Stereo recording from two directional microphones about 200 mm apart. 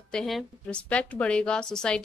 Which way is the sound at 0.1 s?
Centre (ahead or behind).